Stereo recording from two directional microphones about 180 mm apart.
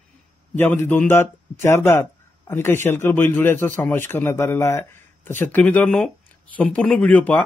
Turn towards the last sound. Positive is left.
turn(degrees=10)  # may be behind; listen again after turning